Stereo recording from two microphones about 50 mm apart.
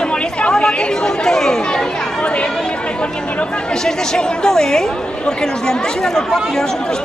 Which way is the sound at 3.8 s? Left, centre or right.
Centre.